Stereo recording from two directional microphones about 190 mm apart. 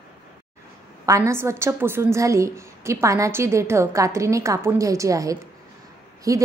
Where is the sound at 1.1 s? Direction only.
15° right (ahead or behind).